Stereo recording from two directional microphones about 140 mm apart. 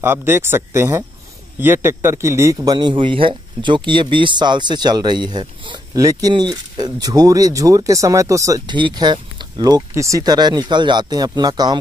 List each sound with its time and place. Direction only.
0.0 s a man's voice: 15° right (ahead or behind)